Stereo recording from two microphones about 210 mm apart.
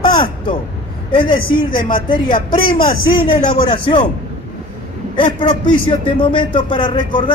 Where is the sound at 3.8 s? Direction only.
25° left (ahead or behind).